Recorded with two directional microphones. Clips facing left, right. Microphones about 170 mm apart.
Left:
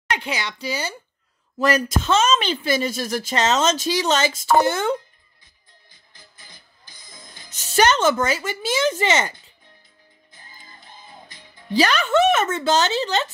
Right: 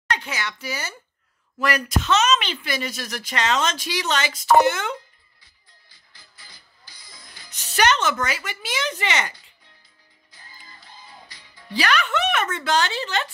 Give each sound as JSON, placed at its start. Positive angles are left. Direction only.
{"t": 0.1, "sound": "a child's voice", "side_deg": 20}
{"t": 0.7, "sound": "speech", "side_deg": 30}
{"t": 6.5, "sound": "music", "side_deg": 50}
{"t": 7.6, "sound": "speech", "side_deg": 30}
{"t": 10.9, "sound": "music", "side_deg": 50}
{"t": 11.5, "sound": "speech", "side_deg": 25}